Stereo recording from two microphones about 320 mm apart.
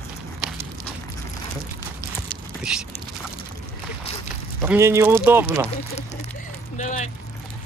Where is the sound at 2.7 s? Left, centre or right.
Centre.